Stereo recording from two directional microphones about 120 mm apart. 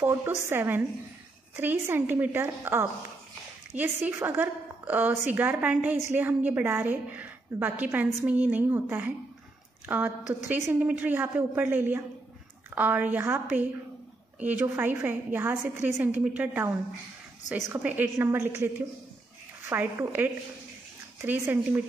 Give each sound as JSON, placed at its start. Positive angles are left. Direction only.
{"t": 0.0, "sound": "a woman's voice", "side_deg": -20}
{"t": 19.7, "sound": "a woman's voice", "side_deg": -15}